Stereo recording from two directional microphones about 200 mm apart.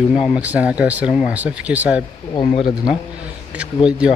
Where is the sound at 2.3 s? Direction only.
25° left (ahead or behind).